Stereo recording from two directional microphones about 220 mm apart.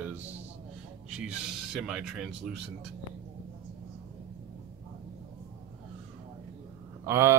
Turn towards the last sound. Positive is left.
turn(degrees=-10)  # may be behind; listen again after turning